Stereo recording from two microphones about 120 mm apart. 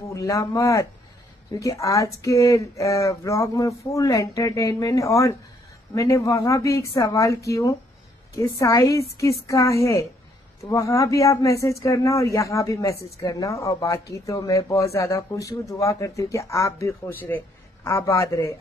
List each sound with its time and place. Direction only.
0.1 s speech: 25° left (ahead or behind)